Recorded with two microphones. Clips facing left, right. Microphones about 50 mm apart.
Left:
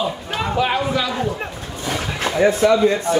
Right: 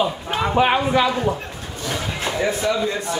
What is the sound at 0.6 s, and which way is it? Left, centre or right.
Speech, right.